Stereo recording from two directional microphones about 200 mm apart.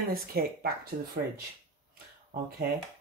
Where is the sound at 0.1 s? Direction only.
50° right (ahead or behind).